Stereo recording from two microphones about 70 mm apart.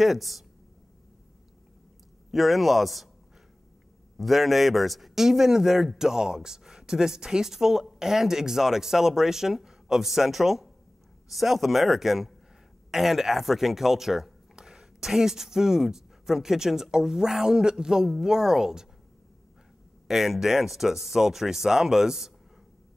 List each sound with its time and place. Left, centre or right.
0.0 s a man's voice: centre
2.3 s a man's voice: centre
4.2 s a man's voice: centre
20.1 s a man's voice: centre